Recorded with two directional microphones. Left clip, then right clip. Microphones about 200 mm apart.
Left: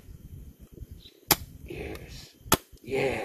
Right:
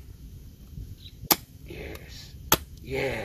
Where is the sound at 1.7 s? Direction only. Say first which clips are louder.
Left 2 dB; 35° left (ahead or behind).